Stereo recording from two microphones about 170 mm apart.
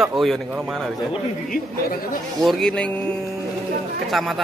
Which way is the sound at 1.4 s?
55° left (ahead or behind).